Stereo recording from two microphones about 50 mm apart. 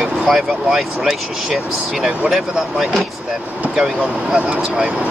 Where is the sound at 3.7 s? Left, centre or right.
Centre.